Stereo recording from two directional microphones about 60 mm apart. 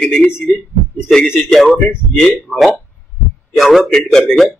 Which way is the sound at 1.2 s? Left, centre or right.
Centre.